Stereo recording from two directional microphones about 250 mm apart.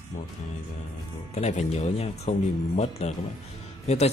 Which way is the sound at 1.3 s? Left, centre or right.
Left.